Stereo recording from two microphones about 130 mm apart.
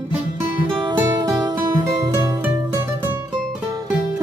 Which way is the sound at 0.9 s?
30° right (ahead or behind).